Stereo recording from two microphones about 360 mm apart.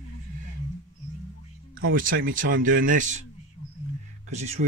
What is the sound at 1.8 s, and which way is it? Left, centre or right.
Speech, right.